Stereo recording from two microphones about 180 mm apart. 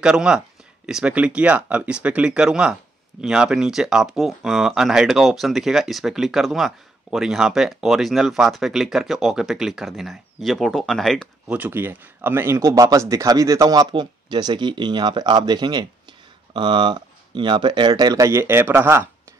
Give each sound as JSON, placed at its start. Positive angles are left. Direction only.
{"t": 0.0, "sound": "speech", "side_deg": -5}
{"t": 11.5, "sound": "speech", "side_deg": -10}